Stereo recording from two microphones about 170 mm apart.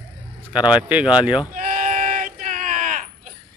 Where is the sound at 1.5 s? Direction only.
50° right (ahead or behind).